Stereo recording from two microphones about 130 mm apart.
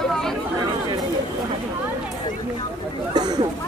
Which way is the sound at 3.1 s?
30° right (ahead or behind).